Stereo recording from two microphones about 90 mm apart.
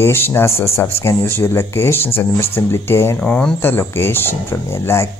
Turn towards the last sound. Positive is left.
turn(degrees=30)  # may be behind; listen again after turning